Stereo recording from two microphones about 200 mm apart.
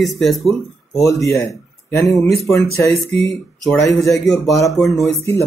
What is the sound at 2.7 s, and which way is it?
Speech, 15° left (ahead or behind).